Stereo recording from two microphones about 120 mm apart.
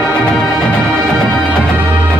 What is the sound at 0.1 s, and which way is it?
Music, 5° left (ahead or behind).